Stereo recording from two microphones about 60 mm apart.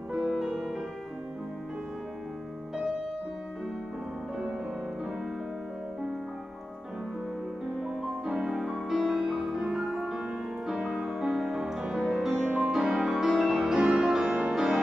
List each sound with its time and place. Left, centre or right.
0.1 s music: centre
7.8 s music: centre
12.4 s music: right